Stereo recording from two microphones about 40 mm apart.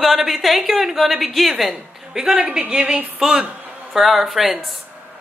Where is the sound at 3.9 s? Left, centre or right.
Centre.